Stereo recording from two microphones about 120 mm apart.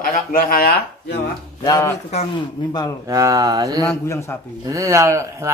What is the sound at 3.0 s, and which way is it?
Speech, 30° right (ahead or behind).